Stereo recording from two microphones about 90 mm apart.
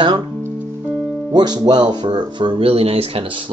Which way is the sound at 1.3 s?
50° right (ahead or behind).